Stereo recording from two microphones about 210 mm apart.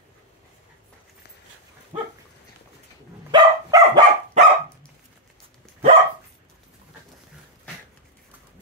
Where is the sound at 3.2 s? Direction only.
20° right (ahead or behind).